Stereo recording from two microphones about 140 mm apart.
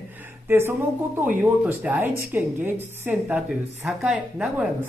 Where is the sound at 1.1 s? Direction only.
10° right (ahead or behind).